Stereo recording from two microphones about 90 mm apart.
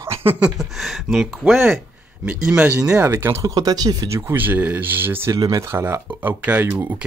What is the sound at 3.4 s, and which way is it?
Speech, 45° right (ahead or behind).